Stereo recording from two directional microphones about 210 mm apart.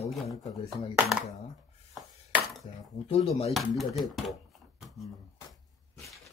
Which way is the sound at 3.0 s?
30° left (ahead or behind).